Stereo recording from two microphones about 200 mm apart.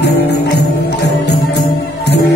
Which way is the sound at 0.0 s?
55° left (ahead or behind).